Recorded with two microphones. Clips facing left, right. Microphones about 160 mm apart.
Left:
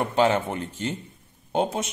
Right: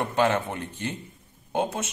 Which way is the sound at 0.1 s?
25° left (ahead or behind).